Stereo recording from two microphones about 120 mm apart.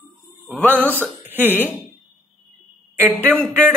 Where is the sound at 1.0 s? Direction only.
15° right (ahead or behind).